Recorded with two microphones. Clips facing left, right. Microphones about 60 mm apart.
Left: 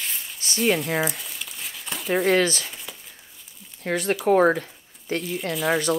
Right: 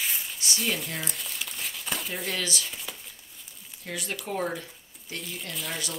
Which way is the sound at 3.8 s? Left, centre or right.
Left.